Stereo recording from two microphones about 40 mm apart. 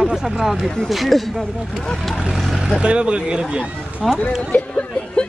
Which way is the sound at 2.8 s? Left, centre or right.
Right.